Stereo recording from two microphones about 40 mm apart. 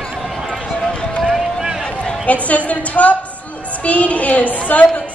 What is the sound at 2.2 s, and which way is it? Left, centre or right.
A woman's voice, left.